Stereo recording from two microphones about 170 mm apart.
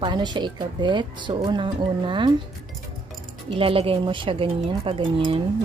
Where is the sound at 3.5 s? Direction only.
30° right (ahead or behind).